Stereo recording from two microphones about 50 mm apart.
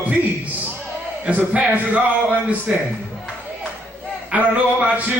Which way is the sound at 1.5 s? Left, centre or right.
Right.